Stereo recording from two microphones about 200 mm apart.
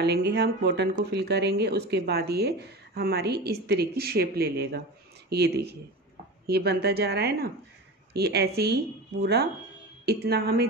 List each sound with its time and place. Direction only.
0.0 s a woman's voice: 55° right (ahead or behind)